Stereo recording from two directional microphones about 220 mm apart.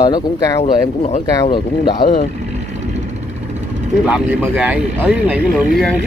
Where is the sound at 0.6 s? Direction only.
30° left (ahead or behind).